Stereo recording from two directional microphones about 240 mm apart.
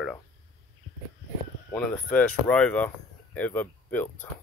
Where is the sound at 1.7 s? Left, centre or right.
Centre.